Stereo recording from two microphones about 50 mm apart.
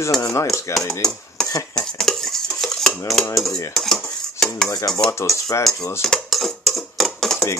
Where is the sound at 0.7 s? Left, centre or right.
Left.